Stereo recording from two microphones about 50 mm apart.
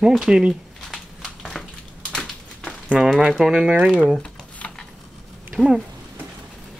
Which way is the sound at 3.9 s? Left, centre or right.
Centre.